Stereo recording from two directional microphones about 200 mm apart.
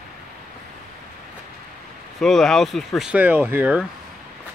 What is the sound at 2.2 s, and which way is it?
Speech, centre (ahead or behind).